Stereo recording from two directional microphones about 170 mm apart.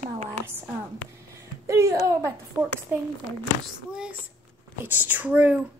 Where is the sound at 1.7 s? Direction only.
20° right (ahead or behind).